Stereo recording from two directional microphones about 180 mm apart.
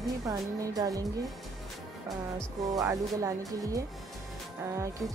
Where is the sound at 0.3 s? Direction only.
20° right (ahead or behind).